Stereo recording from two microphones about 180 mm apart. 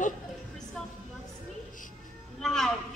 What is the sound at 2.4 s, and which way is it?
Speech, centre (ahead or behind).